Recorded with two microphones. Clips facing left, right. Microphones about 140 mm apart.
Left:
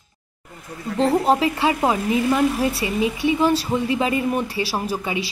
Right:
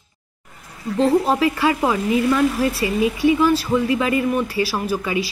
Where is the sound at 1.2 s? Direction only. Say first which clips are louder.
Even; 25° left (ahead or behind).